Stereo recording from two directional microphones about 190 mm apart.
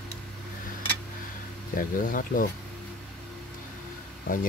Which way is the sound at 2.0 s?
45° left (ahead or behind).